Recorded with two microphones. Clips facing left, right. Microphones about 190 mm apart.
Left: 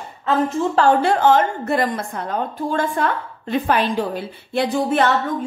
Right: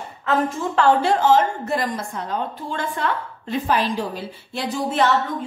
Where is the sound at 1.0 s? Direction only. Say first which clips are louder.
Left 1 dB; 60° left (ahead or behind).